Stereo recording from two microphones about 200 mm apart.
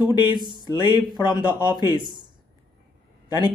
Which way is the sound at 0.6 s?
20° left (ahead or behind).